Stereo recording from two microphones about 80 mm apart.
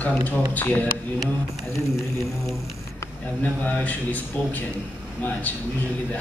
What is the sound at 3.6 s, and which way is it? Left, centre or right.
A man's voice, left.